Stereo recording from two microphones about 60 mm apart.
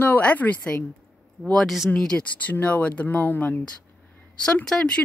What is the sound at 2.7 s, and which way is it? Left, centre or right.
Speech, left.